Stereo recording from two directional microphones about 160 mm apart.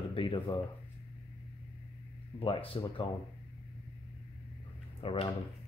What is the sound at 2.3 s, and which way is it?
Speech, 35° left (ahead or behind).